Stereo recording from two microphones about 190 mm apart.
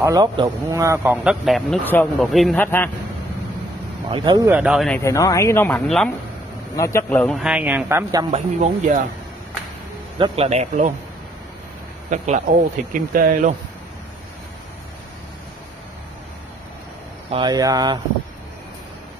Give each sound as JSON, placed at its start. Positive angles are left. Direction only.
{"t": 0.0, "sound": "speech", "side_deg": -20}
{"t": 4.1, "sound": "speech", "side_deg": -25}
{"t": 4.5, "sound": "speech", "side_deg": -5}
{"t": 4.8, "sound": "speech", "side_deg": 10}
{"t": 6.8, "sound": "a man's voice", "side_deg": 15}
{"t": 8.3, "sound": "speech", "side_deg": -40}
{"t": 10.1, "sound": "speech", "side_deg": -30}
{"t": 12.1, "sound": "speech", "side_deg": -40}
{"t": 17.3, "sound": "speech", "side_deg": -20}